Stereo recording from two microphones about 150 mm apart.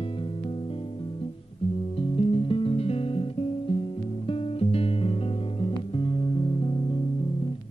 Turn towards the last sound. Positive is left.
turn(degrees=35)  # may be behind; listen again after turning